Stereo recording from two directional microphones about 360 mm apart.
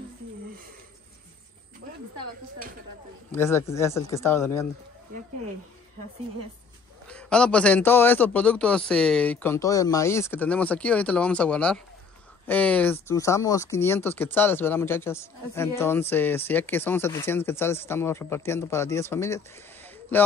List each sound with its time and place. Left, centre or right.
3.3 s speech: centre
7.1 s a man's voice: centre